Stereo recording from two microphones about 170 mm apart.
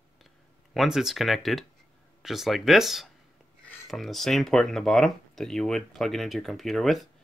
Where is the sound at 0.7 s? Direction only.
Centre (ahead or behind).